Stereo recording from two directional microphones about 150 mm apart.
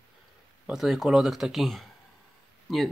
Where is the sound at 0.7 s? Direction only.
Centre (ahead or behind).